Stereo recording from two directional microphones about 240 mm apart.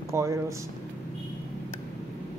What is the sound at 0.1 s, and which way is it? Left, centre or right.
Speech, centre.